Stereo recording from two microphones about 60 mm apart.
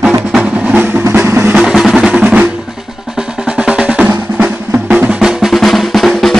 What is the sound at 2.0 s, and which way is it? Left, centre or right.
Drum, centre.